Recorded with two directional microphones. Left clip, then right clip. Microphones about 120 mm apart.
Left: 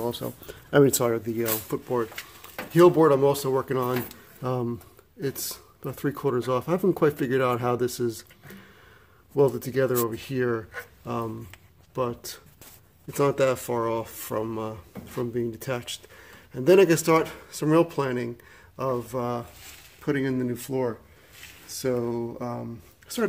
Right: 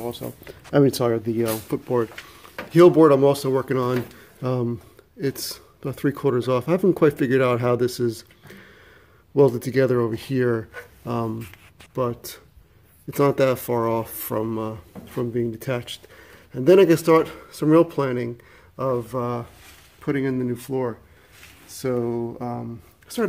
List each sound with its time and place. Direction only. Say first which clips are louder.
0.0 s speech: left 1 dB; 25° left (ahead or behind)
0.5 s speech: right 1 dB; 5° right (ahead or behind)
1.7 s speech: right 4 dB; 35° right (ahead or behind)
2.7 s speech: right 4 dB; 25° right (ahead or behind)
9.3 s speech: right 5 dB; 30° right (ahead or behind)